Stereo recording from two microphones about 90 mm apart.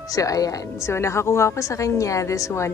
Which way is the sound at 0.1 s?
40° left (ahead or behind).